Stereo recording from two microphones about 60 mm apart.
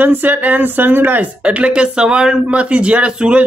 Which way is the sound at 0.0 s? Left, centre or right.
Right.